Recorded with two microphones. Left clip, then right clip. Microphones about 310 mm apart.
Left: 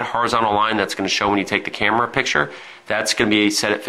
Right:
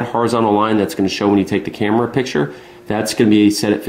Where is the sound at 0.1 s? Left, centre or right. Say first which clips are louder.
Right 3 dB; left.